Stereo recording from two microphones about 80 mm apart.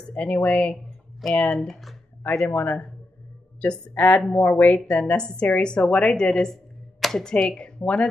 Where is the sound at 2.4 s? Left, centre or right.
Centre.